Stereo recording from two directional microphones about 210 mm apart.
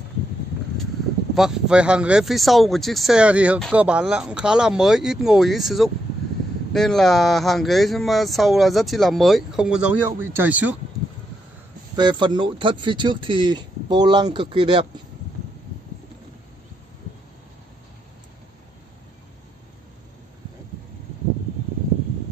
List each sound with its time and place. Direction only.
1.3 s speech: centre (ahead or behind)
11.9 s speech: 20° right (ahead or behind)